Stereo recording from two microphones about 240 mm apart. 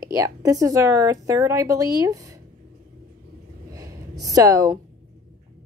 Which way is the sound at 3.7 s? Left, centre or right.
Centre.